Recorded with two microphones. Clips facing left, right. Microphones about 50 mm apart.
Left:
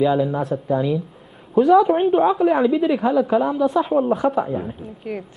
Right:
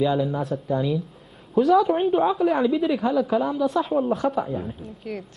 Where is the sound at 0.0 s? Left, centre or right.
Centre.